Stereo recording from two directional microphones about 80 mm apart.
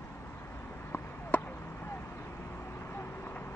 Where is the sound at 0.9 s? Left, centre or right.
Left.